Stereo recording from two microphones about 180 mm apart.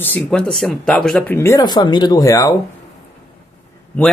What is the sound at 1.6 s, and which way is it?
Speech, 25° left (ahead or behind).